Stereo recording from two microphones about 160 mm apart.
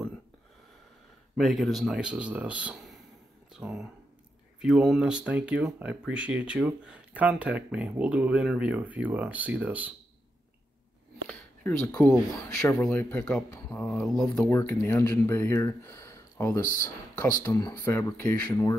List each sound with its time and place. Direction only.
1.3 s speech: centre (ahead or behind)
11.2 s speech: 5° left (ahead or behind)